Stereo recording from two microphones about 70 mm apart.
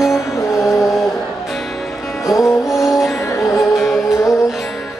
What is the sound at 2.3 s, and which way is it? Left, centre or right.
Music, centre.